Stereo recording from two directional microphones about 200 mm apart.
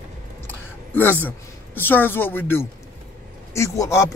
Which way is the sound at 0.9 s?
10° left (ahead or behind).